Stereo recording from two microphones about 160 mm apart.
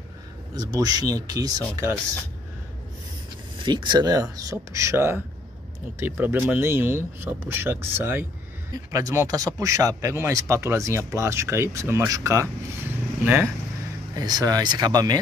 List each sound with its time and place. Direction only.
0.6 s speech: 25° right (ahead or behind)
3.5 s speech: 30° right (ahead or behind); by 13.5 s 10° right (ahead or behind)
14.1 s speech: 25° right (ahead or behind)